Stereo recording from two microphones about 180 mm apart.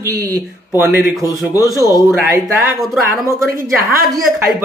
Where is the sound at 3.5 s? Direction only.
55° right (ahead or behind).